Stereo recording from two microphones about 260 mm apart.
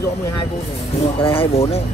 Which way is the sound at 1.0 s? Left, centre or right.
Left.